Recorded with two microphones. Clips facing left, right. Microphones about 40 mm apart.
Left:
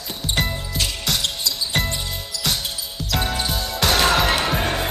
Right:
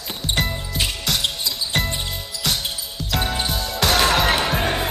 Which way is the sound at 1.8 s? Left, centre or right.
Centre.